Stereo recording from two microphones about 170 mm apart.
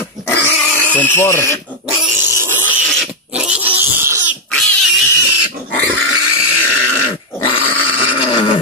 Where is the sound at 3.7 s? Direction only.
15° right (ahead or behind).